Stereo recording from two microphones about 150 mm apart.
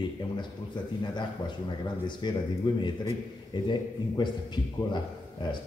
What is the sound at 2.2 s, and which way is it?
A man's voice, 30° left (ahead or behind).